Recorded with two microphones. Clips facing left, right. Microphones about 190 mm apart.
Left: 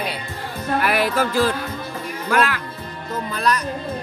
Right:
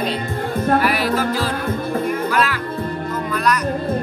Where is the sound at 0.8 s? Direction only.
50° left (ahead or behind).